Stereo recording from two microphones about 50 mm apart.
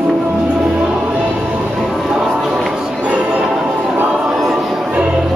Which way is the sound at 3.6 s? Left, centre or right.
Centre.